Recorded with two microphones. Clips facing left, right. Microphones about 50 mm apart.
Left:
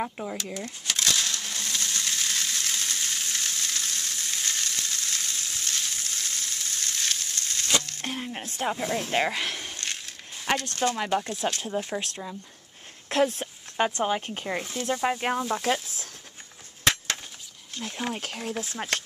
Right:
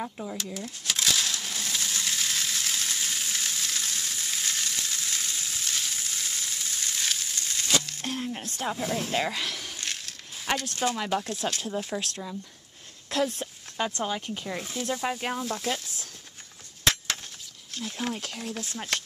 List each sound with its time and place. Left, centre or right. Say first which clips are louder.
0.0 s speech: left 3 dB; left
0.6 s crushing: left 1 dB; centre
8.1 s speech: right 2 dB; centre
8.7 s speech: left 1 dB; centre
9.1 s speech: left 2 dB; centre
9.8 s a sound: left 1 dB; centre
11.1 s speech: left 2 dB; centre
13.1 s speech: left 4 dB; left
14.6 s speech: left 1 dB; centre
14.9 s speech: left 4 dB; centre
16.8 s a sound: left 1 dB; centre
17.7 s speech: even; centre